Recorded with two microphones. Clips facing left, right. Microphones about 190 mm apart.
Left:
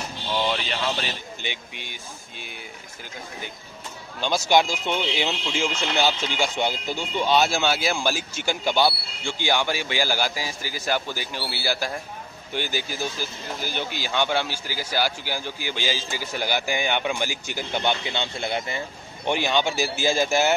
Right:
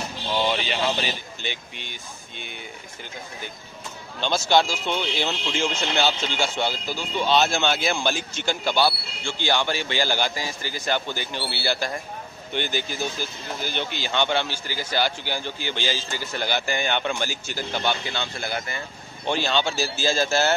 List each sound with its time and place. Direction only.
0.4 s a sound: 5° right (ahead or behind)
1.4 s speech: 15° left (ahead or behind)
4.2 s speech: 10° left (ahead or behind)